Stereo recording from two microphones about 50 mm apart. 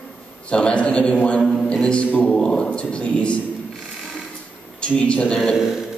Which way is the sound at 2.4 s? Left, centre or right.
Centre.